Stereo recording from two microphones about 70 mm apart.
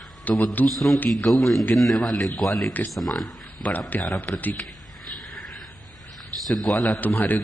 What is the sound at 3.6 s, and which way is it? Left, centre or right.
Speech, left.